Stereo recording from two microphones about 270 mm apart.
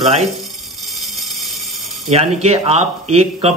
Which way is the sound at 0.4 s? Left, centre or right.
Centre.